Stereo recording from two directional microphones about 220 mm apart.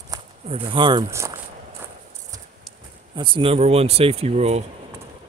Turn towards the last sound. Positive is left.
turn(degrees=-30)  # may be behind; listen again after turning